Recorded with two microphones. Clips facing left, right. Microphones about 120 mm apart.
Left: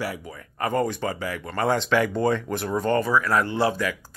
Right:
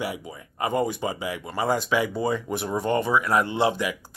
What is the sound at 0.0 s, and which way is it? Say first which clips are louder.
Speech: even; 20° right (ahead or behind).